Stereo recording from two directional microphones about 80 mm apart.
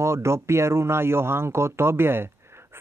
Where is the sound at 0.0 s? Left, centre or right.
Right.